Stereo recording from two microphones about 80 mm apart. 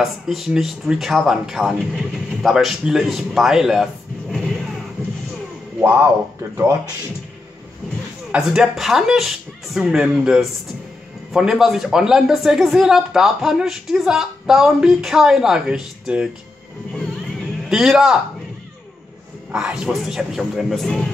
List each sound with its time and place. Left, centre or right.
0.0 s a man's voice: centre
5.8 s speech: centre
8.3 s speech: centre
17.0 s cat: centre
19.5 s speech: centre